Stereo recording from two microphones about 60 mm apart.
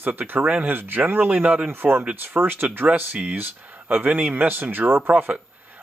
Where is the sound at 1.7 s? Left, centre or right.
Right.